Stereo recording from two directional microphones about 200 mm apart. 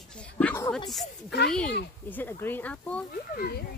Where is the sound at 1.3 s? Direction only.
55° left (ahead or behind).